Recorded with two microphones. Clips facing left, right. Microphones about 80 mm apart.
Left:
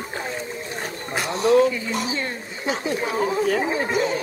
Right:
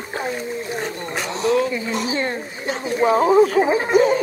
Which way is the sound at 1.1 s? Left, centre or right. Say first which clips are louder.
Left 1 dB; centre.